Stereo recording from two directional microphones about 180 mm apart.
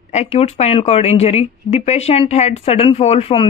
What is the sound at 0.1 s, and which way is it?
Speech, 35° left (ahead or behind).